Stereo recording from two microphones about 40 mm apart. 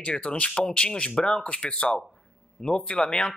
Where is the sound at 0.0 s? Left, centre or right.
Left.